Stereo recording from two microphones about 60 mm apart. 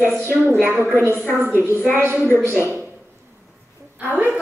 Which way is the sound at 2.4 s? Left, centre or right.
Right.